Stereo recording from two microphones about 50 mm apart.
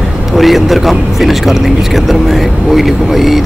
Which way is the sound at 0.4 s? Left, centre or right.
Centre.